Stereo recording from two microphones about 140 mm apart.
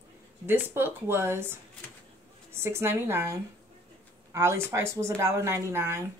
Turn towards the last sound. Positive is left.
turn(degrees=-20)  # may be behind; listen again after turning